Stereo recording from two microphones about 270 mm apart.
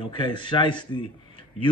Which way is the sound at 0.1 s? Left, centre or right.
Centre.